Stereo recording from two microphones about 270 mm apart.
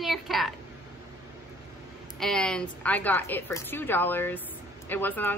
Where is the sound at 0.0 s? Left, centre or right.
Centre.